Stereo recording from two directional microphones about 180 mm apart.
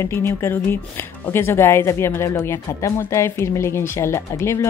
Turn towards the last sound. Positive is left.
turn(degrees=15)  # may be behind; listen again after turning